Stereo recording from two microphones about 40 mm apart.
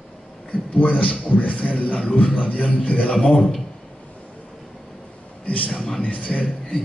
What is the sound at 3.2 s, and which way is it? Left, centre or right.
Speech, left.